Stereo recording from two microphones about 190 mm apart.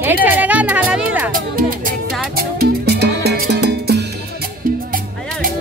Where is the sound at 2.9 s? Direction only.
55° right (ahead or behind).